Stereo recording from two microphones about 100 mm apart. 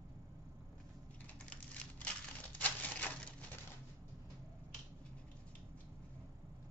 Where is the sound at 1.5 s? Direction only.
15° left (ahead or behind).